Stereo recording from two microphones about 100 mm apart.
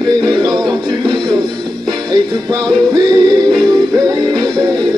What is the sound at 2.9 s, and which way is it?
Music, 40° right (ahead or behind).